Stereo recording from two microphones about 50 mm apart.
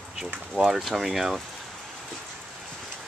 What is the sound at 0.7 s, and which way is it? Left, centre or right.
Speech, centre.